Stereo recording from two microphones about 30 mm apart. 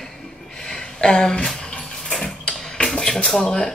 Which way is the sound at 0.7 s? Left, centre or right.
Left.